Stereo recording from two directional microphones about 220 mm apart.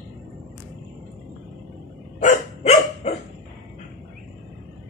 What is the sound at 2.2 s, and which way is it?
Dog, 30° left (ahead or behind).